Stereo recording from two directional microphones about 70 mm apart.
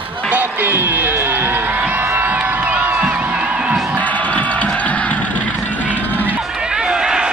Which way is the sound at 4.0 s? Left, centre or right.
Left.